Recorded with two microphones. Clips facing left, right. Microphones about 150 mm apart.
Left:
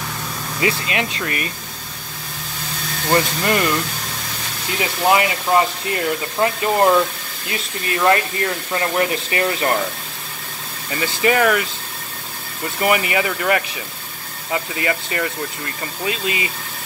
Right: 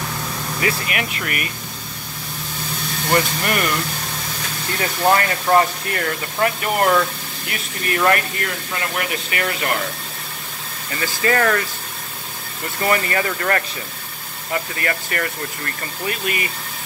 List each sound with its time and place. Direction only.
0.6 s speech: 25° left (ahead or behind)
3.1 s speech: 25° left (ahead or behind)
4.7 s speech: 10° left (ahead or behind); by 9.7 s 30° left (ahead or behind)
11.0 s speech: 15° left (ahead or behind)
12.8 s speech: 15° left (ahead or behind)